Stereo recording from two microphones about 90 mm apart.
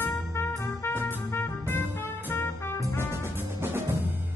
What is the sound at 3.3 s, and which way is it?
Music, 25° right (ahead or behind).